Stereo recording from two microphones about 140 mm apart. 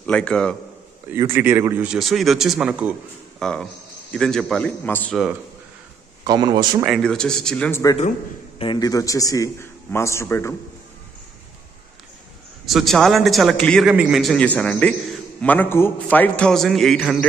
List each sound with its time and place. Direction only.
0.0 s a man's voice: 5° left (ahead or behind)
1.1 s a man's voice: 20° right (ahead or behind)
1.9 s a man's voice: centre (ahead or behind)
3.3 s a man's voice: 5° left (ahead or behind)
6.2 s speech: 30° right (ahead or behind)
6.9 s a man's voice: 5° left (ahead or behind)
8.5 s a man's voice: 35° left (ahead or behind); by 10.5 s 15° left (ahead or behind)
12.6 s a man's voice: centre (ahead or behind)